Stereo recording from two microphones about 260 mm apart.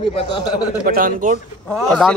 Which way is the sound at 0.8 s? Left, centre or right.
Right.